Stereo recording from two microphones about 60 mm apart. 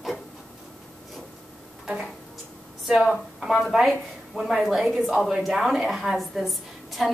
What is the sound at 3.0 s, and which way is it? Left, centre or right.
A woman's voice, centre.